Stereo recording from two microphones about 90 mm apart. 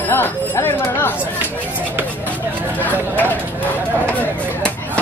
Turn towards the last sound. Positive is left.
turn(degrees=20)  # may be behind; listen again after turning